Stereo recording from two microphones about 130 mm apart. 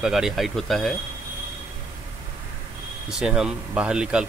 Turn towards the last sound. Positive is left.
turn(degrees=-5)  # may be behind; listen again after turning